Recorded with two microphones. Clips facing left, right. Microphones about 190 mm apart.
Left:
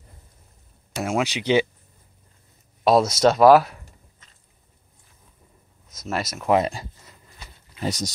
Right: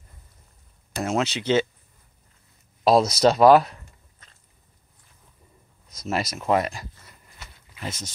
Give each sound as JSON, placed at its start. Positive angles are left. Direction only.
{"t": 0.9, "sound": "speech", "side_deg": 10}
{"t": 2.8, "sound": "speech", "side_deg": 0}
{"t": 6.1, "sound": "speech", "side_deg": 0}
{"t": 6.5, "sound": "speech", "side_deg": 25}
{"t": 7.8, "sound": "speech", "side_deg": 35}